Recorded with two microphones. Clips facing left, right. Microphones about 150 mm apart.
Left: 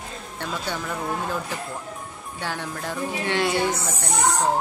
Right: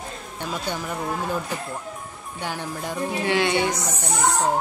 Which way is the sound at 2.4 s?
15° right (ahead or behind).